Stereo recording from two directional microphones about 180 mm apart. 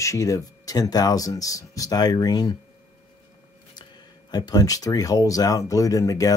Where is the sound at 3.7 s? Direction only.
25° left (ahead or behind).